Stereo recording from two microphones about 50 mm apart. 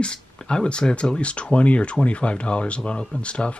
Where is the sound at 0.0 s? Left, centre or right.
Centre.